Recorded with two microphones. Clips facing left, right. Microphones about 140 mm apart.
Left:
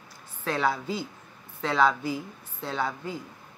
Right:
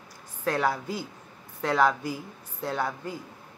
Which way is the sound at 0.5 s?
10° right (ahead or behind).